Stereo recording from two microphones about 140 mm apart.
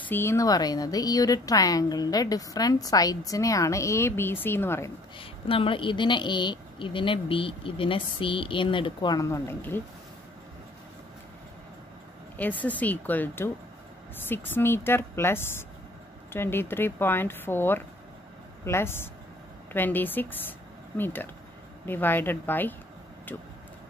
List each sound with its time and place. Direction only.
0.1 s a woman's voice: 20° left (ahead or behind)
5.2 s speech: 40° left (ahead or behind); by 9.8 s 15° left (ahead or behind)
12.4 s speech: 10° left (ahead or behind)